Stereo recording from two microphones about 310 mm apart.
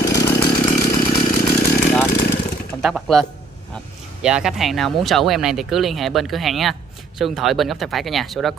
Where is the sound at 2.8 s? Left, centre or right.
Centre.